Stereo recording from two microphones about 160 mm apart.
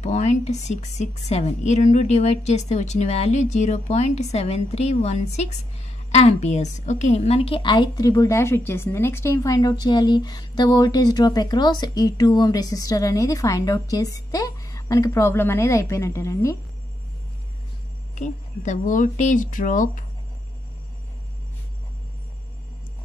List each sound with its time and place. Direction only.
0.0 s a woman's voice: 45° left (ahead or behind); by 16.5 s 20° left (ahead or behind)
18.1 s a woman's voice: 50° left (ahead or behind)